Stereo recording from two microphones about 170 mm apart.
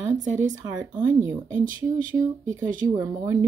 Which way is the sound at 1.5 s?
50° right (ahead or behind).